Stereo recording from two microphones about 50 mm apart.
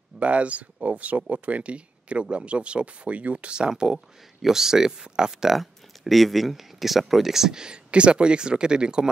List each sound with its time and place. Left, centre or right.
0.2 s speech: right
5.6 s speech: centre